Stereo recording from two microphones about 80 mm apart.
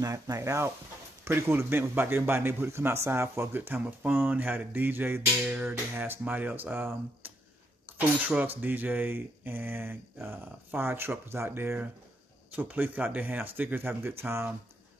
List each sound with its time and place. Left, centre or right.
0.0 s speech: right